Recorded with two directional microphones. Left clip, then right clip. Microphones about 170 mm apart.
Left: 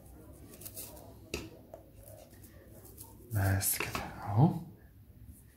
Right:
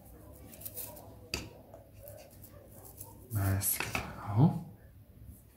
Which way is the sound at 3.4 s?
40° left (ahead or behind).